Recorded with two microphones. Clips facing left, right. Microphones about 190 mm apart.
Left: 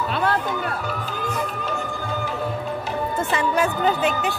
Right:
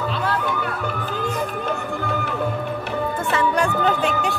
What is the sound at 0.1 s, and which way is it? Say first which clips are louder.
Music: left 2 dB; 55° left (ahead or behind).